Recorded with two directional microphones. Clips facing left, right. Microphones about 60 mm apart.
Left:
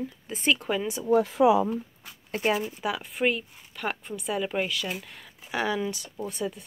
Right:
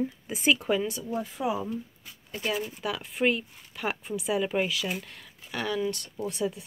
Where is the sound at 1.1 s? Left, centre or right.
Left.